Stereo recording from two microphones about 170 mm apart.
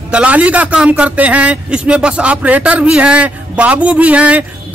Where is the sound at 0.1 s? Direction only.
5° right (ahead or behind).